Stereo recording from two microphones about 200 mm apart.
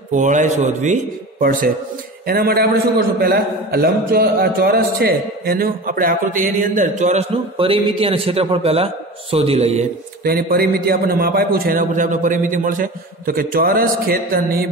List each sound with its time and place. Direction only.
0.1 s a man's voice: 40° right (ahead or behind)
10.2 s a man's voice: 50° right (ahead or behind)